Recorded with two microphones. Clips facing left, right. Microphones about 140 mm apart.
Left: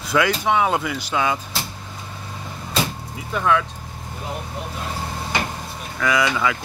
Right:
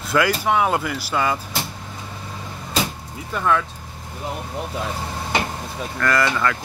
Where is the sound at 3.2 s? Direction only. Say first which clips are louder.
Left 1 dB; centre (ahead or behind).